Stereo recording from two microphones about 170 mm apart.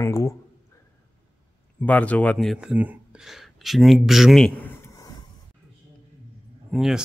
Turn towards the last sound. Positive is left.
turn(degrees=0)  # may be behind; listen again after turning